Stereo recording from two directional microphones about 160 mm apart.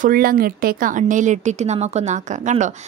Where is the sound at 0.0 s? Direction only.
65° right (ahead or behind).